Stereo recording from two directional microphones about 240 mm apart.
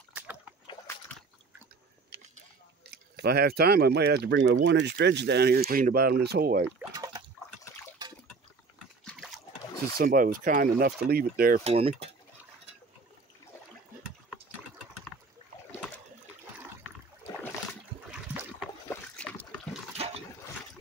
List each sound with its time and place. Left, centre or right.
0.1 s a sound: centre
2.9 s speech: right
6.9 s a sound: centre
9.9 s speech: right
18.1 s water: centre
18.9 s splash: centre